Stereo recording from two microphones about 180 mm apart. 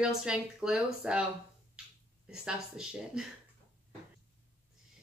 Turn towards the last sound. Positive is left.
turn(degrees=-5)  # may be behind; listen again after turning